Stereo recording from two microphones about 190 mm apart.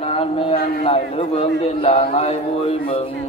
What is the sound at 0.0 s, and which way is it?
A man's voice, 30° left (ahead or behind).